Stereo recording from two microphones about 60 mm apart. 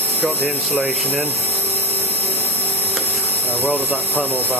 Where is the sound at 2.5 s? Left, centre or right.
Right.